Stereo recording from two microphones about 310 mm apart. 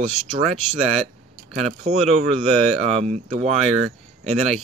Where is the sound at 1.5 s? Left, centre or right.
Right.